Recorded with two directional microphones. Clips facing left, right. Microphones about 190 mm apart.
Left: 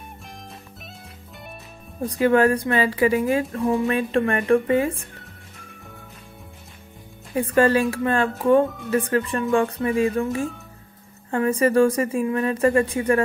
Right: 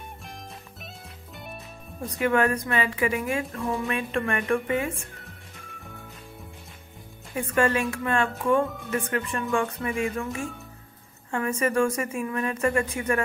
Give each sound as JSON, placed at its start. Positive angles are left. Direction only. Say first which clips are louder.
{"t": 2.0, "sound": "speech", "louder": "left 6 dB", "side_deg": 30}
{"t": 7.3, "sound": "speech", "louder": "left 6 dB", "side_deg": 35}